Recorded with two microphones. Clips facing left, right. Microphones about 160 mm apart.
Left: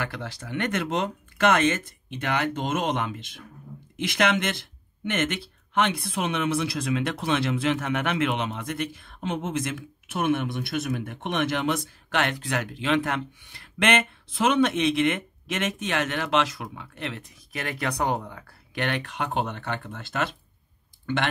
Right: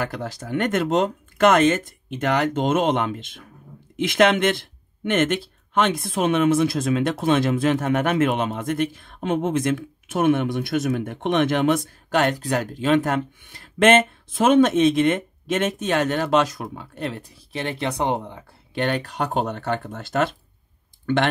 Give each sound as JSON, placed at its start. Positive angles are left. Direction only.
{"t": 0.0, "sound": "speech", "side_deg": -40}
{"t": 21.0, "sound": "clicking", "side_deg": -50}